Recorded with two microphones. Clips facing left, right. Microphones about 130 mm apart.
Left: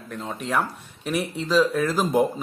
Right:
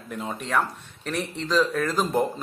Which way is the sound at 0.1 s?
Centre (ahead or behind).